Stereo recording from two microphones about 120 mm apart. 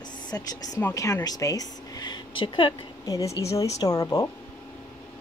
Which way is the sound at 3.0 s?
30° left (ahead or behind).